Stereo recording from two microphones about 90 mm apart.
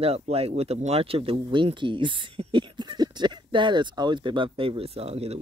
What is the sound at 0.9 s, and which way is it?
Speech, 90° right.